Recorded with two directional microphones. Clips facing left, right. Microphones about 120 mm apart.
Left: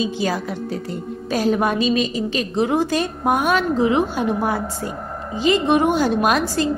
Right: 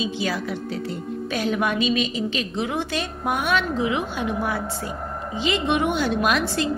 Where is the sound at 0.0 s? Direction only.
40° left (ahead or behind).